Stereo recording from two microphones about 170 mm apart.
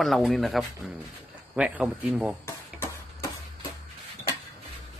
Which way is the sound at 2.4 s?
15° left (ahead or behind).